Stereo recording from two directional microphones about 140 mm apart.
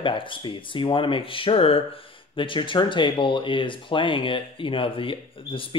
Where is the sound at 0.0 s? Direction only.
35° left (ahead or behind).